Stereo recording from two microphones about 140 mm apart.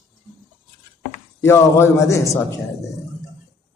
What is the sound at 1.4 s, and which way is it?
A man's voice, 20° left (ahead or behind).